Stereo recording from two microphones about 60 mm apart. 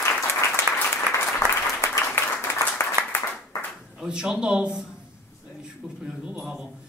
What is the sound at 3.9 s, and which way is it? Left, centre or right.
Speech, centre.